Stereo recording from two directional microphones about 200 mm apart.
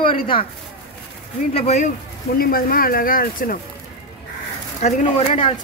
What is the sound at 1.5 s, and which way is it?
Speech, 35° left (ahead or behind).